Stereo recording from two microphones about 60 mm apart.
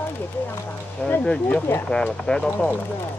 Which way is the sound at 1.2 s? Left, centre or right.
Centre.